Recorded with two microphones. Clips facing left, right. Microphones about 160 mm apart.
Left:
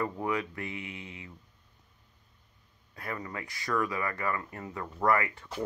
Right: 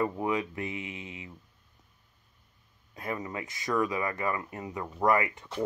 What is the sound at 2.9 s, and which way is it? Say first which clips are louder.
Speech: right 3 dB; 20° right (ahead or behind).